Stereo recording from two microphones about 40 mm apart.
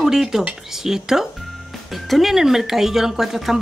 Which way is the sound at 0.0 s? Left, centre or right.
Centre.